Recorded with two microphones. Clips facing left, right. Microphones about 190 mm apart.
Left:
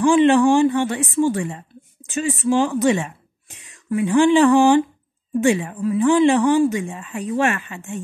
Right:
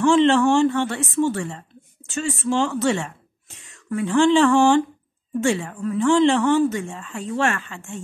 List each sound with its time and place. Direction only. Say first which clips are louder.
0.0 s speech: left 2 dB; 15° left (ahead or behind)